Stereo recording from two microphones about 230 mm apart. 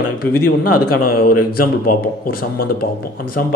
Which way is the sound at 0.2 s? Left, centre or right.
Left.